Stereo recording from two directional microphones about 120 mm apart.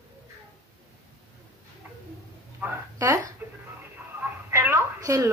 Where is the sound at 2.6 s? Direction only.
15° right (ahead or behind).